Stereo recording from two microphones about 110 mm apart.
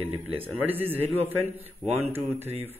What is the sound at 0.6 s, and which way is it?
Speech, 15° right (ahead or behind).